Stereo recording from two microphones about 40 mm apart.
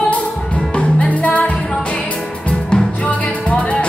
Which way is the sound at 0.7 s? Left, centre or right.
Left.